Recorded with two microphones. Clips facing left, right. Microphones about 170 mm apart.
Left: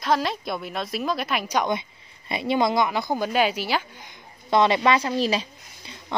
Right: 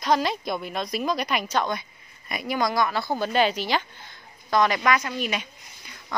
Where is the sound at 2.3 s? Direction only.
25° left (ahead or behind).